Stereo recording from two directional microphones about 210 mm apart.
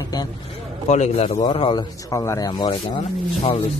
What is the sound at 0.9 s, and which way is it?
Speech, 30° left (ahead or behind).